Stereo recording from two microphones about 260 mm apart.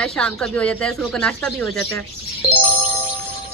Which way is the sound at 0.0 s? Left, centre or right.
Centre.